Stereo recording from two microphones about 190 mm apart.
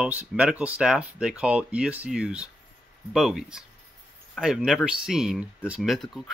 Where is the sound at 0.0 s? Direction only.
5° right (ahead or behind).